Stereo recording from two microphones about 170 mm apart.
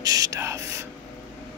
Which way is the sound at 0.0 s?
20° right (ahead or behind).